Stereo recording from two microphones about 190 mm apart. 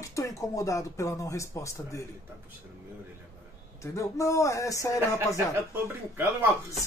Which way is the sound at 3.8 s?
15° left (ahead or behind).